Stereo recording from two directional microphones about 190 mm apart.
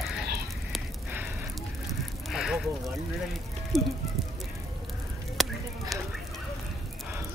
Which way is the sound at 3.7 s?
Centre (ahead or behind).